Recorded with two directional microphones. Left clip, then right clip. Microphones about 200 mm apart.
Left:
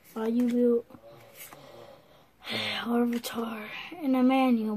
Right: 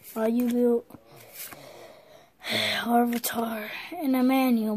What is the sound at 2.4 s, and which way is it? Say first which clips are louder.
A woman's voice: right 5 dB; 40° right (ahead or behind).